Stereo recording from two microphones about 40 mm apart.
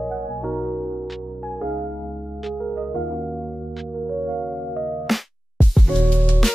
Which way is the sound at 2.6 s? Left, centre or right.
Centre.